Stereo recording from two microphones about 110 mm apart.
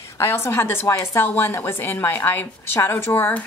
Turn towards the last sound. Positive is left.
turn(degrees=20)  # may be behind; listen again after turning